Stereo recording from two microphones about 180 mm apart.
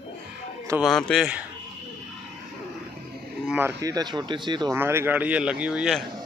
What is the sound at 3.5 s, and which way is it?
Speech, 10° right (ahead or behind).